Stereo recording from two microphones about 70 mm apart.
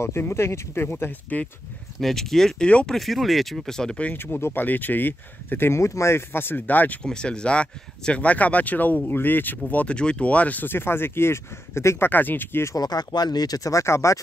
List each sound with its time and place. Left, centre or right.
0.0 s speech: left
2.0 s speech: centre
2.7 s speech: centre
3.0 s speech: centre
4.0 s speech: left
7.0 s speech: centre; by 12.1 s left
12.1 s speech: left
12.7 s speech: left